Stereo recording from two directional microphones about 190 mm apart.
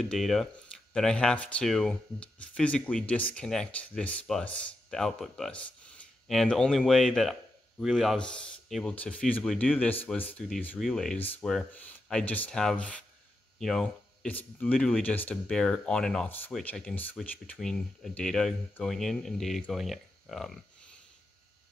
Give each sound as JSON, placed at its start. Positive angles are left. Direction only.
{"t": 0.0, "sound": "speech", "side_deg": 0}